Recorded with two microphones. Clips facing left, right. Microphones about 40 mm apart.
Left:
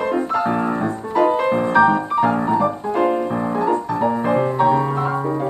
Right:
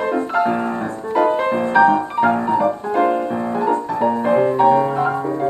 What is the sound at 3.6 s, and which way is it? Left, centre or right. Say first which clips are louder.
Music: right 2 dB; centre.